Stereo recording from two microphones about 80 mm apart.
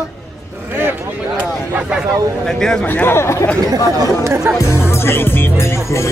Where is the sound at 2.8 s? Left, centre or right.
Left.